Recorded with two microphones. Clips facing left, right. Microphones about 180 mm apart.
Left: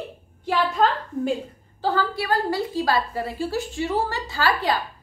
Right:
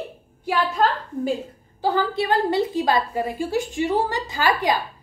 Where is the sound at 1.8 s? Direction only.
20° right (ahead or behind).